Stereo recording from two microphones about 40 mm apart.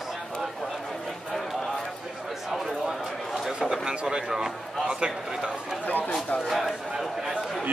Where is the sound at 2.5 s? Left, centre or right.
Centre.